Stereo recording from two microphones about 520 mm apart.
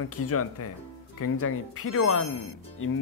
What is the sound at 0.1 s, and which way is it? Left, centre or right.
Speech, left.